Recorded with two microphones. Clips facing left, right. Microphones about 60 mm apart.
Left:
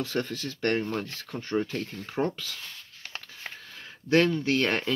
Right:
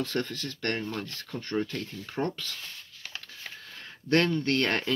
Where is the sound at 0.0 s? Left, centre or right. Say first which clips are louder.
Left 1 dB; centre.